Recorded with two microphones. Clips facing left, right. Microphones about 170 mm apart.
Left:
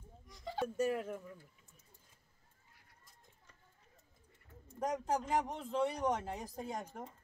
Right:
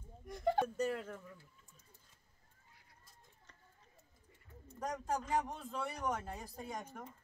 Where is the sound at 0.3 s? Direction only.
55° right (ahead or behind).